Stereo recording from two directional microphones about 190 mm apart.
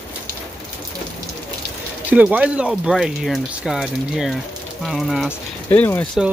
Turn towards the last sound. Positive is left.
turn(degrees=10)  # may be behind; listen again after turning